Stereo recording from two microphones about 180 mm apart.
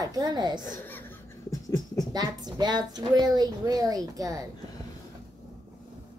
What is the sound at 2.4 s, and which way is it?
A woman's voice, 25° right (ahead or behind).